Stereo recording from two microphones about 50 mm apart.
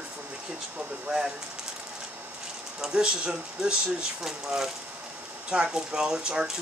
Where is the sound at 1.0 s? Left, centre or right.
Centre.